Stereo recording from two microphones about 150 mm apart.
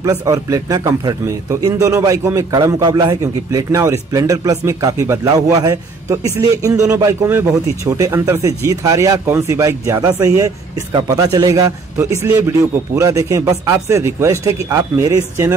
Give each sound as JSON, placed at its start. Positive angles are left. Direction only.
{"t": 0.0, "sound": "speech", "side_deg": -25}